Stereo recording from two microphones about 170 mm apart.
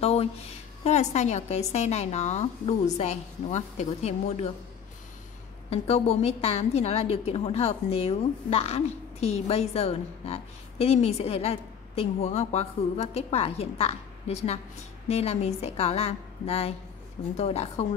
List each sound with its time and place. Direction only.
0.0 s a sound: 35° left (ahead or behind)
0.8 s a woman's voice: 40° left (ahead or behind)
5.7 s a woman's voice: 40° left (ahead or behind)